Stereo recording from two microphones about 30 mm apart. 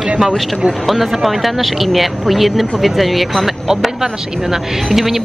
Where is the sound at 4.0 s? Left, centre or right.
Centre.